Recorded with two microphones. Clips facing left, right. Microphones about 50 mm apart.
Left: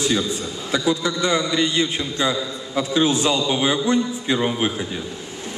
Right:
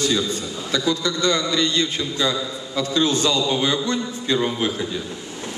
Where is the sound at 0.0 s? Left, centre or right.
Centre.